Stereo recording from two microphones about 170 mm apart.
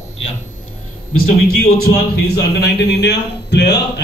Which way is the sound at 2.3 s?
75° left (ahead or behind).